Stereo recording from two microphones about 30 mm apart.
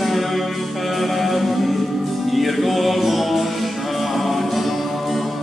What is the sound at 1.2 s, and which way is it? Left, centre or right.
Music, centre.